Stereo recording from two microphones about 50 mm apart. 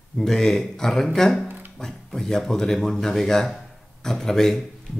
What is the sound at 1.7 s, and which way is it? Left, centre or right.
Speech, centre.